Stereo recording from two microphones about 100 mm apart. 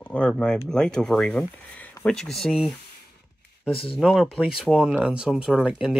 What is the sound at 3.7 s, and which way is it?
Speech, 65° left (ahead or behind).